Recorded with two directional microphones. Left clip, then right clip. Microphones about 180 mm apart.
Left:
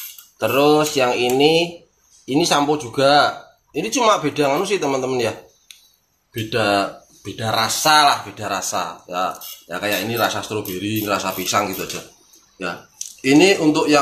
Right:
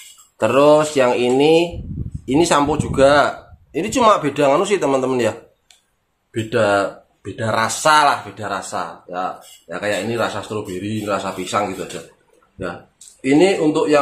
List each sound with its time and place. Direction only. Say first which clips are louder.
0.4 s speech: right 3 dB; 50° right (ahead or behind)
6.3 s speech: right 2 dB; 45° right (ahead or behind)
8.4 s speech: left 1 dB; 20° right (ahead or behind)
9.8 s speech: even; 30° right (ahead or behind)
11.1 s speech: even; 15° right (ahead or behind)
13.2 s speech: left 1 dB; 15° right (ahead or behind)